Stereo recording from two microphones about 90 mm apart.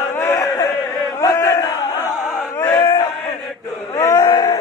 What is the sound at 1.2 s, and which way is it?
Battle cry, 35° left (ahead or behind).